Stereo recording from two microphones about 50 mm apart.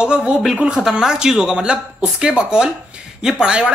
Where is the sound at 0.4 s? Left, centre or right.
Centre.